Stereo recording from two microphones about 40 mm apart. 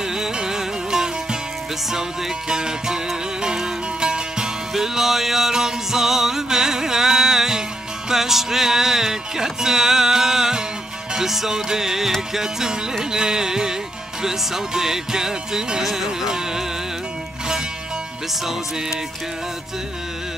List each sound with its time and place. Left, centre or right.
0.1 s music: centre